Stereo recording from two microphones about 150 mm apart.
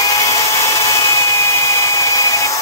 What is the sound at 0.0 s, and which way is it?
Tools, 20° left (ahead or behind).